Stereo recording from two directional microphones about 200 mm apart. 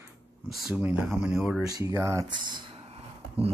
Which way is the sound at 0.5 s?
Centre (ahead or behind).